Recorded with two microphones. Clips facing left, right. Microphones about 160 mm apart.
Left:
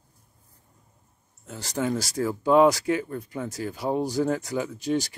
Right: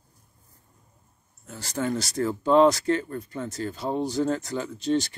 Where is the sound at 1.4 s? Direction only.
15° left (ahead or behind).